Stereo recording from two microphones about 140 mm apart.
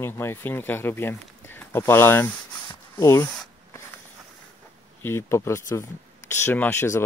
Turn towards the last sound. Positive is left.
turn(degrees=20)  # may be behind; listen again after turning